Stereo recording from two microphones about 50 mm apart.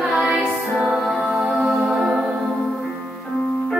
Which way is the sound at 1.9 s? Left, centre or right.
Centre.